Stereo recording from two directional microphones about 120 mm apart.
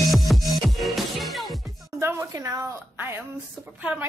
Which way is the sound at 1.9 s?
20° right (ahead or behind).